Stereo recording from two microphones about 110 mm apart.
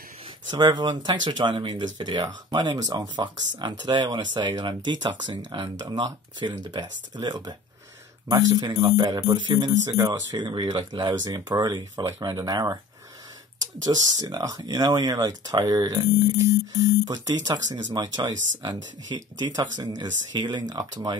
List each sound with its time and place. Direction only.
0.5 s speech: 40° right (ahead or behind)
11.1 s speech: 30° right (ahead or behind)
13.8 s speech: 35° right (ahead or behind)